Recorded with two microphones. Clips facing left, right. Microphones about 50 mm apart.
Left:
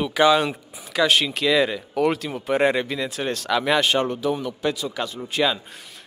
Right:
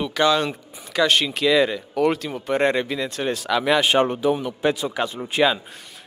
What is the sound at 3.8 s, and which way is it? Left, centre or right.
A man's voice, right.